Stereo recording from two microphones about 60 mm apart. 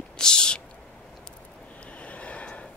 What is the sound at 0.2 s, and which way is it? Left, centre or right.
Owl, centre.